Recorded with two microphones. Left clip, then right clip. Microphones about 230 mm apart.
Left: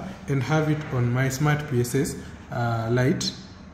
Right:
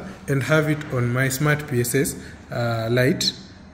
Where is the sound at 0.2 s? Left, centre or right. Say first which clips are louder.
Right 5 dB; centre.